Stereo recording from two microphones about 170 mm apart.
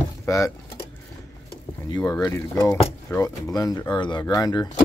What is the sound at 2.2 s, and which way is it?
Speech, 20° left (ahead or behind).